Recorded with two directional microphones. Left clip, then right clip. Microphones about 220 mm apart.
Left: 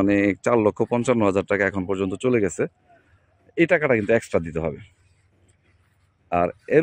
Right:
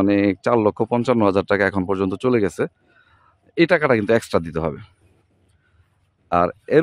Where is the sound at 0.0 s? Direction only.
10° right (ahead or behind).